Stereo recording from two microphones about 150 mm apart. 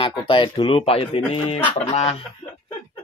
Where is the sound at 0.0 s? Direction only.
35° left (ahead or behind).